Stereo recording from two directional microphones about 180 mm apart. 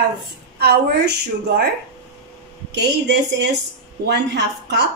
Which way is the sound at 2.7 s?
70° right (ahead or behind).